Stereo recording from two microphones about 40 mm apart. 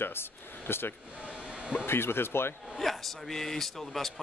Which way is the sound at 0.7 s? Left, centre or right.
Left.